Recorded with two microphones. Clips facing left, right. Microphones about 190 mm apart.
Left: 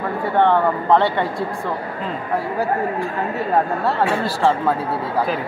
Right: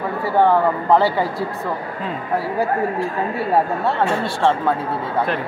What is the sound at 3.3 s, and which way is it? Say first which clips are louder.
Speech: even; 5° right (ahead or behind).